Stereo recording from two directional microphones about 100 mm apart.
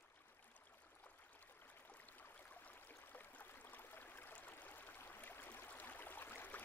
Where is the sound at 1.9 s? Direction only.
15° left (ahead or behind).